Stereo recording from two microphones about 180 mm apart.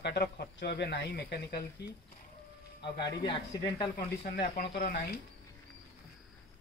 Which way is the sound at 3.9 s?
55° left (ahead or behind).